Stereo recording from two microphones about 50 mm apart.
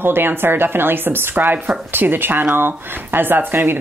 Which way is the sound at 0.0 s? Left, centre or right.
Right.